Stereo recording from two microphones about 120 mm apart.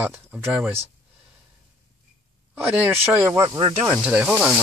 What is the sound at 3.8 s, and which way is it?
Speech, 15° right (ahead or behind).